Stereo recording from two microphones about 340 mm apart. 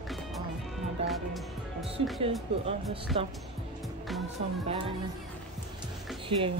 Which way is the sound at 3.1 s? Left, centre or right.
Centre.